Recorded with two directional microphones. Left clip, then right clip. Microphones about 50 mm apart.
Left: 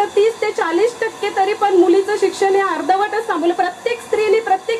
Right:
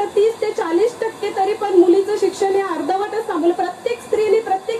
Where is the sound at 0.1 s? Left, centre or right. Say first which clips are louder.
Left 1 dB; left.